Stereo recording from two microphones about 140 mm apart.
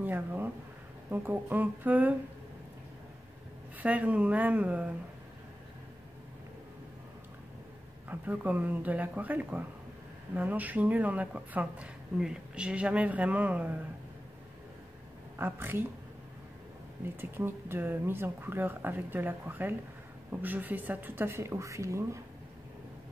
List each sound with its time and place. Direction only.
0.0 s speech: 15° right (ahead or behind)
3.8 s speech: 10° right (ahead or behind)
8.1 s speech: 10° right (ahead or behind)
15.3 s speech: 15° right (ahead or behind)
17.2 s speech: 15° right (ahead or behind)